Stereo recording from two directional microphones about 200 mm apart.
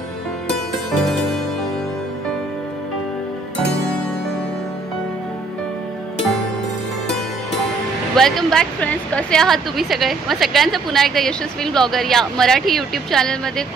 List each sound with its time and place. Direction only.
0.9 s harpsichord: centre (ahead or behind)
8.2 s a woman's voice: centre (ahead or behind)